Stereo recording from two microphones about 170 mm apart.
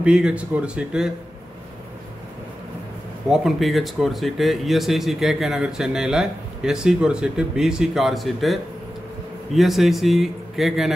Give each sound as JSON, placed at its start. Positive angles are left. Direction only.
{"t": 0.0, "sound": "speech", "side_deg": -5}
{"t": 3.3, "sound": "speech", "side_deg": 0}